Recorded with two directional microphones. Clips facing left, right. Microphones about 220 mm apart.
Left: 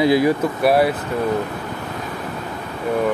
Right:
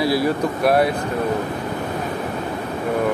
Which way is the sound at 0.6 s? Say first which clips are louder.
Left 1 dB; 5° left (ahead or behind).